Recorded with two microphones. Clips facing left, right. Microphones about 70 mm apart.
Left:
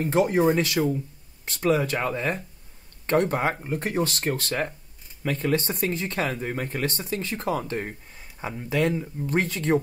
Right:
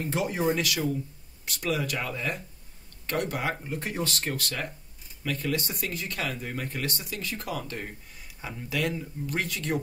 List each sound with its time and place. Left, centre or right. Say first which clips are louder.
0.0 s speech: left 7 dB; left